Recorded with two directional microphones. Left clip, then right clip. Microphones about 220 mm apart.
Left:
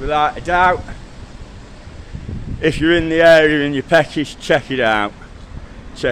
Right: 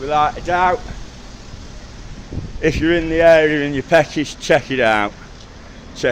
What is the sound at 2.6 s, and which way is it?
A man's voice, 15° left (ahead or behind).